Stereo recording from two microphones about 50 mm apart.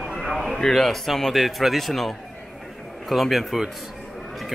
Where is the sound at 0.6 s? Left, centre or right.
Centre.